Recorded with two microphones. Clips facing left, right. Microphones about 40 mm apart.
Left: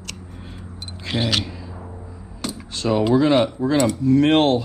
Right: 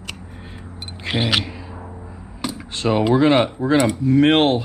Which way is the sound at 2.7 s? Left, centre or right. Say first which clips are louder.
Right 1 dB; right.